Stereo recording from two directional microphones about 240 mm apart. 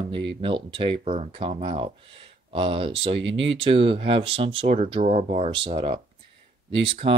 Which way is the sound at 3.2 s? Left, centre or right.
Right.